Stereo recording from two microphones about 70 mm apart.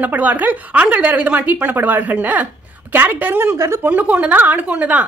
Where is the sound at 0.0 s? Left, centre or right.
Right.